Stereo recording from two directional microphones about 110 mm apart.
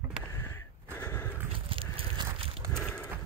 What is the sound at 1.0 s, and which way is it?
Horse, 25° left (ahead or behind).